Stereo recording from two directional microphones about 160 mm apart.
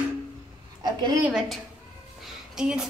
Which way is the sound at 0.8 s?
25° right (ahead or behind).